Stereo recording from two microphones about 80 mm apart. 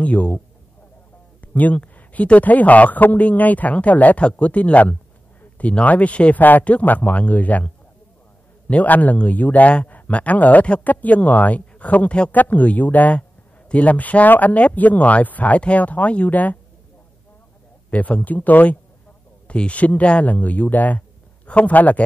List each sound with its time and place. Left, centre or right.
0.0 s speech: centre
1.4 s speech: centre
17.9 s speech: centre